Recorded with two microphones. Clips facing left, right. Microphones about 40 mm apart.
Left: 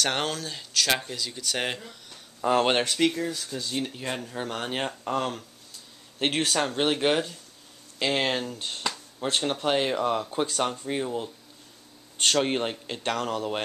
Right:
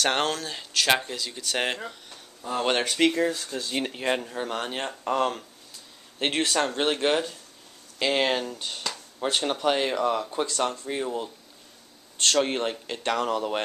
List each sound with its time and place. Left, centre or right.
0.0 s speech: centre
2.4 s speech: left
3.0 s speech: right
3.3 s speech: centre
3.7 s speech: right
4.3 s speech: centre
4.6 s speech: centre
5.0 s speech: centre
11.0 s speech: centre
12.2 s speech: centre
13.1 s speech: centre